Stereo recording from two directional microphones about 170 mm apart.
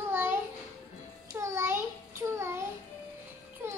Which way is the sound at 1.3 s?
15° right (ahead or behind).